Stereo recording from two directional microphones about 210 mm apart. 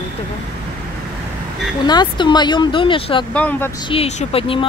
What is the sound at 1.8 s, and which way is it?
Speech, 20° left (ahead or behind).